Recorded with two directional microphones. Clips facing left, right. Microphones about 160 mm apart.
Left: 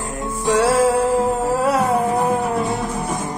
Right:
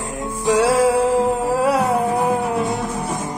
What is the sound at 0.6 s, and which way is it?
Music, 15° right (ahead or behind).